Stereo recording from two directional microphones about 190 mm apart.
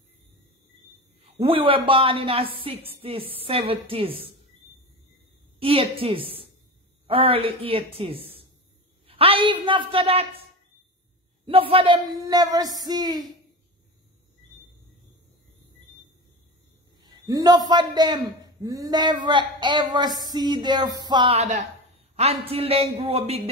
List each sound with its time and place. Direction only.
1.4 s a man's voice: 30° right (ahead or behind)
5.6 s a woman's voice: 30° right (ahead or behind)
11.4 s a man's voice: 30° right (ahead or behind)
17.0 s a man's voice: 20° right (ahead or behind)